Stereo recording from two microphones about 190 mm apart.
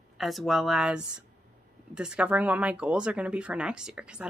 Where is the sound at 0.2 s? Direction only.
Centre (ahead or behind).